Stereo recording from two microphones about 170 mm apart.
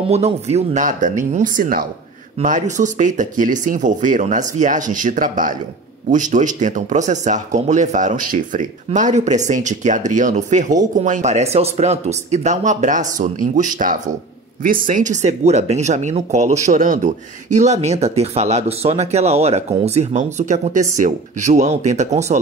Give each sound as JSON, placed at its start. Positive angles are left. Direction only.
{"t": 0.1, "sound": "speech", "side_deg": -40}